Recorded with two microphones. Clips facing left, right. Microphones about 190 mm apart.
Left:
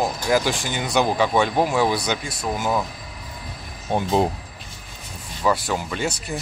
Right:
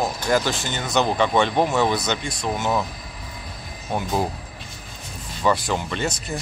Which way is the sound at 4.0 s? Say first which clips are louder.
Left 4 dB; 25° left (ahead or behind).